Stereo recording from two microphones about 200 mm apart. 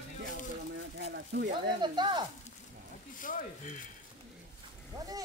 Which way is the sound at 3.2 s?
40° left (ahead or behind).